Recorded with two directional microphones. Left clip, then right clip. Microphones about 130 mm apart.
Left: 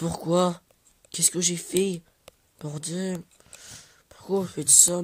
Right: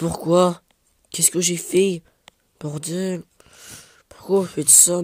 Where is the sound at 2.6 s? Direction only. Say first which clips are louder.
Right 6 dB; 45° right (ahead or behind).